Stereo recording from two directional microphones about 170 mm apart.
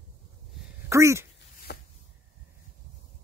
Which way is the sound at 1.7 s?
75° left (ahead or behind).